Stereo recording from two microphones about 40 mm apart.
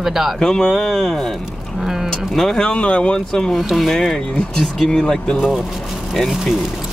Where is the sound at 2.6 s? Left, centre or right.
Left.